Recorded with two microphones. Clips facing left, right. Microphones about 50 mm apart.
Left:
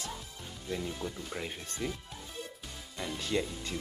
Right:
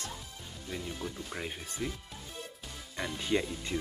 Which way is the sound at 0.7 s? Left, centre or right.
Centre.